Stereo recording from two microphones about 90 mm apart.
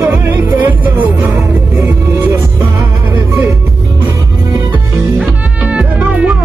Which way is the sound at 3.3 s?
35° right (ahead or behind).